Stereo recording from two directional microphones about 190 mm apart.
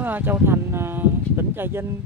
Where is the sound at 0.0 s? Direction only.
10° right (ahead or behind).